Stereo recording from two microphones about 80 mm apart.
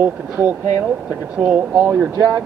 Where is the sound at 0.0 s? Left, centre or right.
Centre.